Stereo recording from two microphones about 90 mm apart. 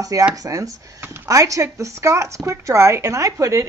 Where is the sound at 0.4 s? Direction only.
40° right (ahead or behind).